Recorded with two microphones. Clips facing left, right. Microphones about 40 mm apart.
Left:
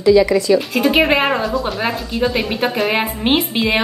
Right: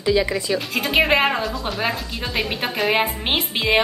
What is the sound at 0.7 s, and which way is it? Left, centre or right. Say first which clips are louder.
A woman's voice: left 4 dB; centre.